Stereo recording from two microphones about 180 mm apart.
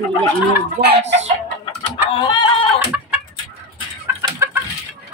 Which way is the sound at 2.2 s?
25° left (ahead or behind).